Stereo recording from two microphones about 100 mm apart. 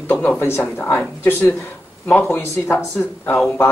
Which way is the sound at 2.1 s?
20° left (ahead or behind).